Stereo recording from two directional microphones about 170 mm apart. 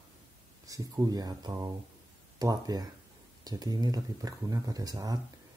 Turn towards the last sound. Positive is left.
turn(degrees=-20)  # may be behind; listen again after turning